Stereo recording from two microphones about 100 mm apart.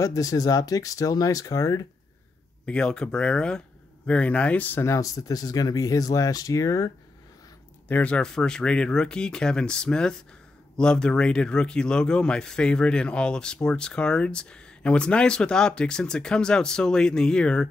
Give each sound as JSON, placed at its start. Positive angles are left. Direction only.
{"t": 0.0, "sound": "speech", "side_deg": 35}
{"t": 2.6, "sound": "speech", "side_deg": 10}
{"t": 4.8, "sound": "speech", "side_deg": 35}
{"t": 7.9, "sound": "speech", "side_deg": 10}